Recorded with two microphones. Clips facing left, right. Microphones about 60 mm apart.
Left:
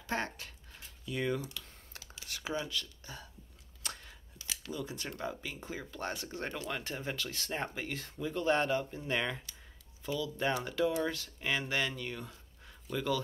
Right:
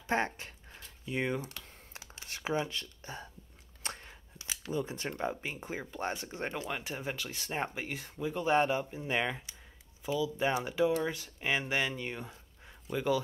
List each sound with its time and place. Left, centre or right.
0.0 s speech: right
3.8 s a sound: right
4.5 s speech: right